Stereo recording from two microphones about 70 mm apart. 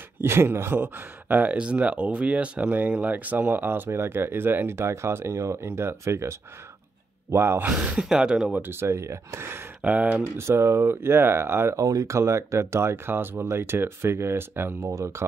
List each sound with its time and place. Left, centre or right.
0.2 s speech: right
7.3 s speech: right
7.6 s speech: centre
8.6 s speech: right
9.8 s speech: right
10.3 s speech: right
11.8 s speech: right
14.8 s speech: right